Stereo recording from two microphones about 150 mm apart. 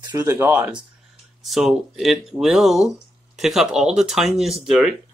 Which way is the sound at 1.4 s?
Centre (ahead or behind).